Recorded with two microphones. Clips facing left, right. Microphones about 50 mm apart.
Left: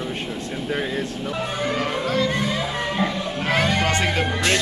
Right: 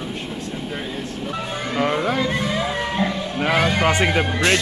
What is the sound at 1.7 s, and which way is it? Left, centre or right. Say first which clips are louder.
Speech: right 5 dB; centre.